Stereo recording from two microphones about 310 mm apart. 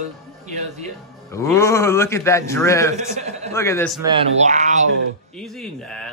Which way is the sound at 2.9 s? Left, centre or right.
Right.